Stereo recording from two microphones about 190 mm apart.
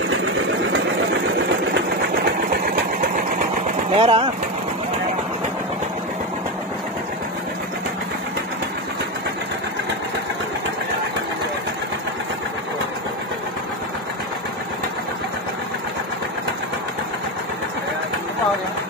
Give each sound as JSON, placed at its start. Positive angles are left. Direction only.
{"t": 1.7, "sound": "sewing machine", "side_deg": -50}
{"t": 3.9, "sound": "speech", "side_deg": -30}